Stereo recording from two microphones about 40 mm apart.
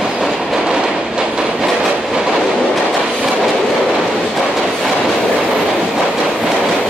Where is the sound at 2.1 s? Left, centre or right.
Centre.